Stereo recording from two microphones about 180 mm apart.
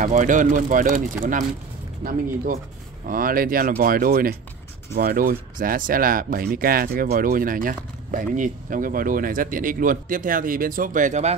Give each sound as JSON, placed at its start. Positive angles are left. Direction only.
{"t": 0.0, "sound": "speech", "side_deg": -45}